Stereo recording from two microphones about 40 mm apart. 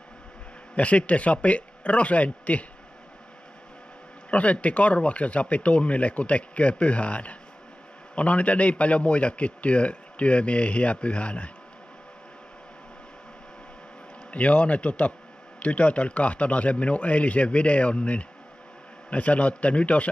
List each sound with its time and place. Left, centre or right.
0.7 s a man's voice: left
4.3 s a man's voice: left
14.3 s a man's voice: left